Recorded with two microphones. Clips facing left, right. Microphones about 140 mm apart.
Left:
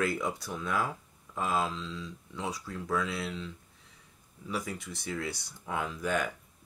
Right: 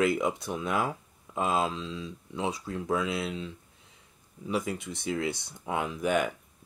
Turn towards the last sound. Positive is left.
turn(degrees=-20)  # may be behind; listen again after turning